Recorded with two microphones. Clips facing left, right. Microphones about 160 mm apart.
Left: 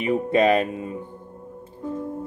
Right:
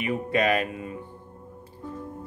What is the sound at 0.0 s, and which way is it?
Speech, 25° left (ahead or behind).